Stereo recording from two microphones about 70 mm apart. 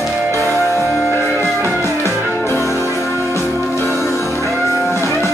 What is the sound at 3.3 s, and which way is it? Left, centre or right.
Music, left.